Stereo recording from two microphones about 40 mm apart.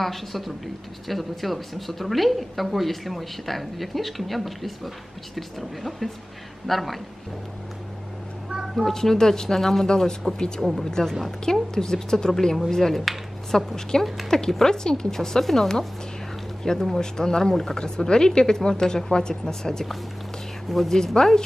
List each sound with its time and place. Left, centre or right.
0.0 s a woman's voice: centre
8.8 s speech: centre
10.6 s a woman's voice: centre
10.9 s speech: centre
20.9 s speech: centre